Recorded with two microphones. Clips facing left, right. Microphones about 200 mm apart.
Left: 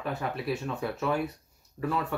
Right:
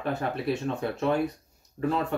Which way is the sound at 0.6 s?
30° right (ahead or behind).